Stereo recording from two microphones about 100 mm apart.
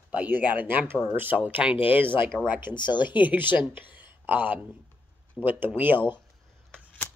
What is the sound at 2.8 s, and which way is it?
Speech, 50° left (ahead or behind).